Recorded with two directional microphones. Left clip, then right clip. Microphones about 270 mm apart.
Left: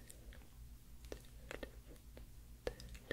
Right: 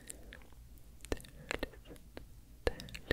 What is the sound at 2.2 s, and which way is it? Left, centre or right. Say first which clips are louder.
Whispering: right 8 dB; right.